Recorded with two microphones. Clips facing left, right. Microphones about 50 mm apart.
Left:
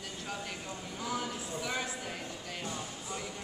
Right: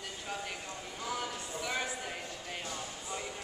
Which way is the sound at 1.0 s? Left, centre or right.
Centre.